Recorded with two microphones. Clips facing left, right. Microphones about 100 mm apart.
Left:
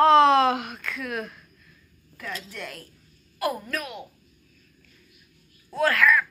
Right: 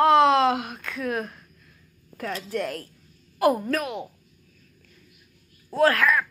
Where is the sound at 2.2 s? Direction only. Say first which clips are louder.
Right 7 dB; 40° right (ahead or behind).